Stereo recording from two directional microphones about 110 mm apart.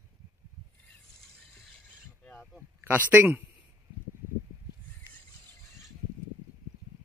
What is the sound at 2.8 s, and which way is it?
Speech, 15° right (ahead or behind).